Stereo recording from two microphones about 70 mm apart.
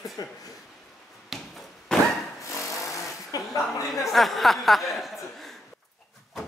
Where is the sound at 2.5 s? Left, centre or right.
Left.